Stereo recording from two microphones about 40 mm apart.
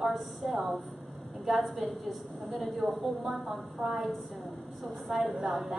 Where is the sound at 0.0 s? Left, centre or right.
Centre.